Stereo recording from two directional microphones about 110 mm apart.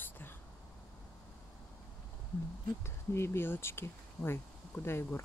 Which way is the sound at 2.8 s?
25° left (ahead or behind).